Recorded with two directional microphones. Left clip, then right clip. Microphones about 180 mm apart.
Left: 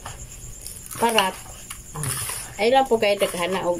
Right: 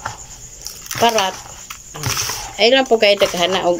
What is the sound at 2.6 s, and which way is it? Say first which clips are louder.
Speech: right 6 dB; 25° left (ahead or behind).